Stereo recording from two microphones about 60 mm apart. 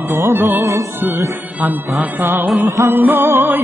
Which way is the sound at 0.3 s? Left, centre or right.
Right.